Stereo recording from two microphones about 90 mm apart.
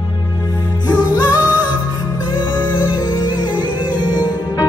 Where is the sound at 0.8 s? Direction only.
55° left (ahead or behind).